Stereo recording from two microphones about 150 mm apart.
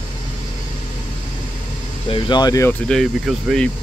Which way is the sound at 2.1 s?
30° left (ahead or behind).